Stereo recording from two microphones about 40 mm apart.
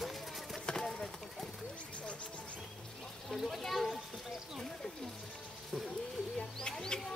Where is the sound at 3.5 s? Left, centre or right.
Centre.